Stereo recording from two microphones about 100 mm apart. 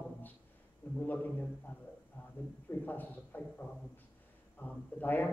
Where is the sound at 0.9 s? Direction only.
15° left (ahead or behind).